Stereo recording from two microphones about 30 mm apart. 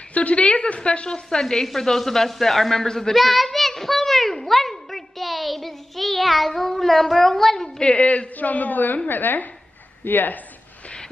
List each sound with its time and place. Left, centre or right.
0.1 s a woman's voice: left
1.4 s a man's voice: centre
3.2 s a child's voice: centre
3.5 s a sound: centre
7.8 s a woman's voice: left
8.4 s a woman's voice: left